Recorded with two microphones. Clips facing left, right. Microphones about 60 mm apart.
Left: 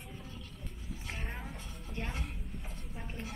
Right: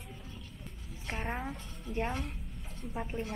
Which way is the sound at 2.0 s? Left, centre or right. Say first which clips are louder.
Right 7 dB; centre.